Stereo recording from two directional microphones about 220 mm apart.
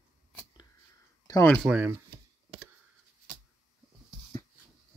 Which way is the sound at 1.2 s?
10° left (ahead or behind).